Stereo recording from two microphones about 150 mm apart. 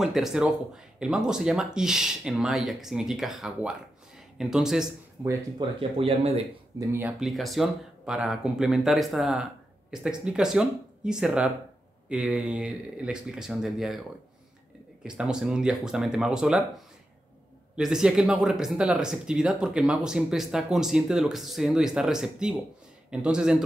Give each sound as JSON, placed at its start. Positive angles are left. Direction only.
{"t": 0.0, "sound": "speech", "side_deg": -5}
{"t": 5.2, "sound": "speech", "side_deg": -15}
{"t": 5.6, "sound": "speech", "side_deg": -40}
{"t": 6.8, "sound": "speech", "side_deg": -15}
{"t": 15.0, "sound": "speech", "side_deg": -5}
{"t": 17.7, "sound": "speech", "side_deg": -5}